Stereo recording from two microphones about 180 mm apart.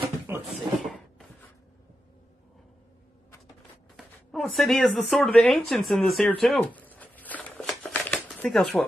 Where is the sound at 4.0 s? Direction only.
Centre (ahead or behind).